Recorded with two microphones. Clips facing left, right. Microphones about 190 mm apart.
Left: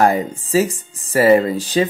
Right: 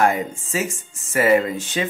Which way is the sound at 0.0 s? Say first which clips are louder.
Left 4 dB; 35° left (ahead or behind).